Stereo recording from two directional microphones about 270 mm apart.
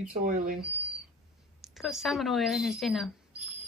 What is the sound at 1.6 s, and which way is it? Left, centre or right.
Speech, centre.